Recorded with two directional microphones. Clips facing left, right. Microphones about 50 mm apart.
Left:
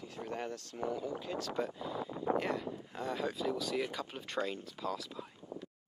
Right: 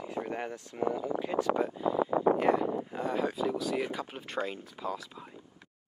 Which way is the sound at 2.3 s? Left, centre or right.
Centre.